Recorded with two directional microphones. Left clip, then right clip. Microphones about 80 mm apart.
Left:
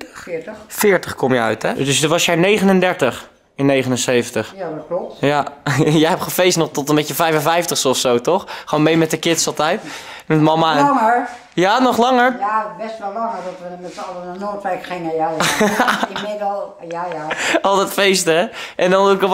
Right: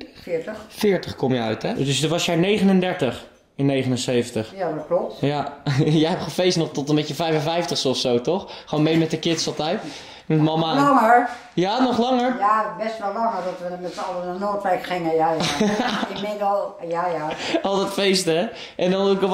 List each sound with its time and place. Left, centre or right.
0.7 s speech: left
10.9 s speech: centre
11.5 s speech: left
14.4 s speech: centre
15.3 s speech: left
17.3 s speech: left